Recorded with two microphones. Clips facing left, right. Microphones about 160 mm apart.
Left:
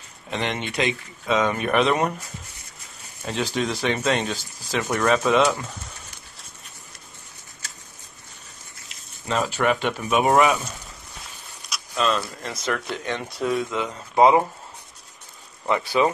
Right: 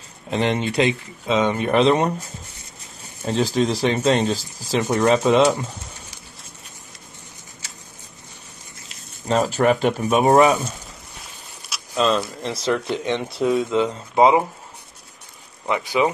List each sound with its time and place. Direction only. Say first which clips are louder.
0.3 s speech: right 6 dB; 30° right (ahead or behind)
9.3 s speech: right 4 dB; 35° right (ahead or behind)
11.9 s speech: right 4 dB; 25° right (ahead or behind)
15.6 s speech: right 1 dB; 15° right (ahead or behind)